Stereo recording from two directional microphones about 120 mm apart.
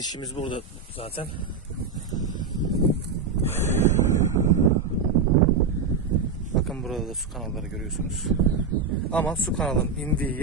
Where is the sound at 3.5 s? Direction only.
20° left (ahead or behind).